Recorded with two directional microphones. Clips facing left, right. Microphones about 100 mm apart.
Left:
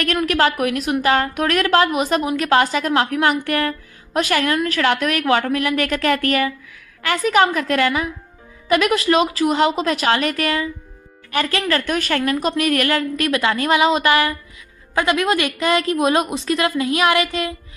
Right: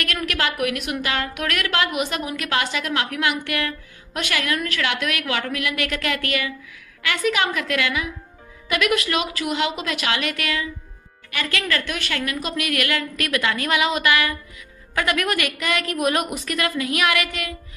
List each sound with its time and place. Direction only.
0.0 s a woman's voice: 35° left (ahead or behind)